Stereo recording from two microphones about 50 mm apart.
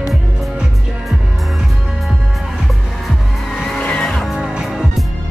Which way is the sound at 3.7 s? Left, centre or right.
Centre.